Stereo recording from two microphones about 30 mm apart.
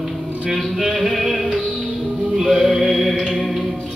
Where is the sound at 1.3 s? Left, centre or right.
Right.